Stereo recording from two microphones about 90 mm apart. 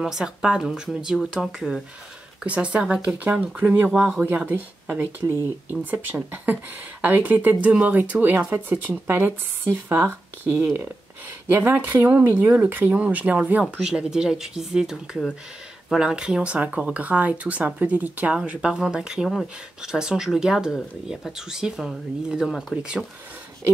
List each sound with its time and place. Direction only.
0.0 s speech: 5° right (ahead or behind)